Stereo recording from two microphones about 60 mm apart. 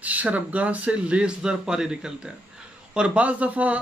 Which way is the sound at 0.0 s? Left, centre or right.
Right.